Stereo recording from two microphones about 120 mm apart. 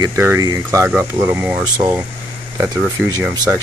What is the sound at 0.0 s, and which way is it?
Speech, 25° right (ahead or behind).